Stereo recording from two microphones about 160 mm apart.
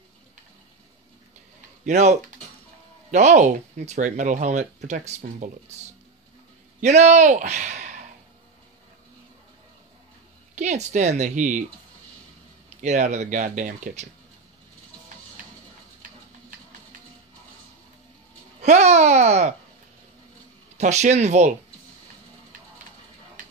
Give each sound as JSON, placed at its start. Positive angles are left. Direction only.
{"t": 1.9, "sound": "speech", "side_deg": -45}
{"t": 6.8, "sound": "speech", "side_deg": -45}
{"t": 10.5, "sound": "speech", "side_deg": -45}
{"t": 12.8, "sound": "speech", "side_deg": -45}
{"t": 18.6, "sound": "speech", "side_deg": -45}
{"t": 20.7, "sound": "speech", "side_deg": -45}